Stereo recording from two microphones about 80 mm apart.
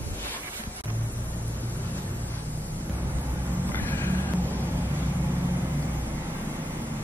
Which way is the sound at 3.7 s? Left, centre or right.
Left.